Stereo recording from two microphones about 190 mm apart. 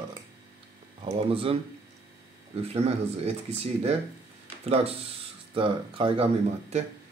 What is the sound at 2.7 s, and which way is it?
A man's voice, 35° right (ahead or behind).